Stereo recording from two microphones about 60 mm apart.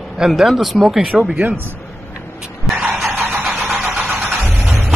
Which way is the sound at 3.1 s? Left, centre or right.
Right.